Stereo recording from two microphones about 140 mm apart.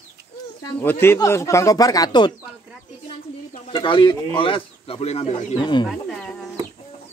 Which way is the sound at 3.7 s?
35° left (ahead or behind).